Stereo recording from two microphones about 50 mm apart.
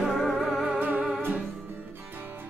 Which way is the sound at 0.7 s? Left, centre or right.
Right.